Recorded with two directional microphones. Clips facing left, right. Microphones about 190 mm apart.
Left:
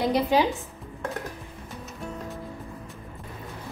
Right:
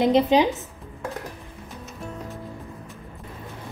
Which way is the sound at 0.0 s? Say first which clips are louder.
Right 4 dB; 20° right (ahead or behind).